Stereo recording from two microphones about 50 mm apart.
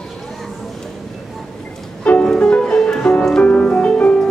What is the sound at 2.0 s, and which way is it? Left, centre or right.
Music, left.